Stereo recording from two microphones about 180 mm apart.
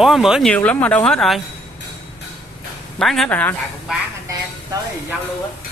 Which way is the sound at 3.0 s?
5° left (ahead or behind).